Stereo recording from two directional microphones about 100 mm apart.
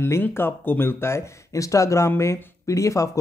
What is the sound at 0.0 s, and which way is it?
Speech, 25° left (ahead or behind).